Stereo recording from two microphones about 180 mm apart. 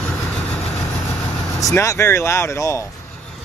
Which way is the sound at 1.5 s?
15° left (ahead or behind).